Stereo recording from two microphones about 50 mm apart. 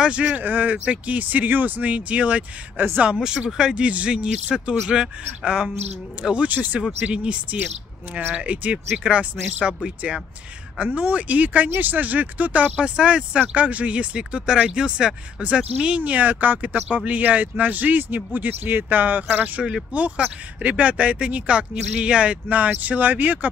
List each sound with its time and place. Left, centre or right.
0.0 s speech: right
3.0 s a man's voice: centre
3.7 s a man's voice: right
8.5 s speech: right
10.8 s speech: right
16.0 s speech: right
20.6 s speech: right